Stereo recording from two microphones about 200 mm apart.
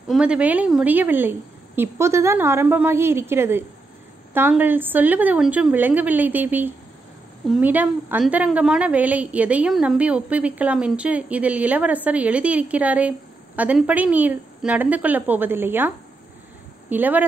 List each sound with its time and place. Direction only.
0.1 s a woman's voice: 5° right (ahead or behind)
16.9 s a woman's voice: 10° right (ahead or behind)